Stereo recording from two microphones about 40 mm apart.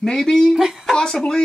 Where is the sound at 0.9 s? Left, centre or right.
Centre.